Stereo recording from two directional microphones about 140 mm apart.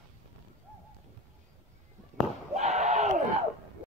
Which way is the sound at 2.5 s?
55° right (ahead or behind).